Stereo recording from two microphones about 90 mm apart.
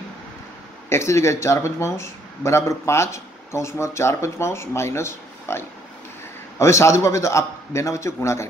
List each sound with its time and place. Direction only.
0.8 s speech: 30° left (ahead or behind)